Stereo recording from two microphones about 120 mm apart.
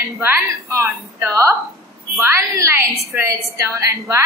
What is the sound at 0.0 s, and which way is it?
A woman's voice, 20° right (ahead or behind).